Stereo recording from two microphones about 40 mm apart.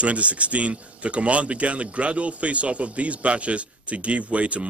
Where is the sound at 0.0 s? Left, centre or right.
Right.